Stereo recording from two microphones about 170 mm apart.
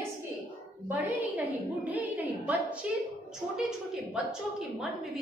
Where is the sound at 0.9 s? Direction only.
10° right (ahead or behind).